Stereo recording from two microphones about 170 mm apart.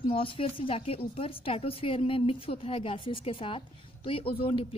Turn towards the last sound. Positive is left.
turn(degrees=35)  # may be behind; listen again after turning